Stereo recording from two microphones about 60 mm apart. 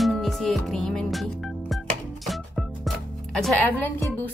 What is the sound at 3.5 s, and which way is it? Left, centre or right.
Speech, left.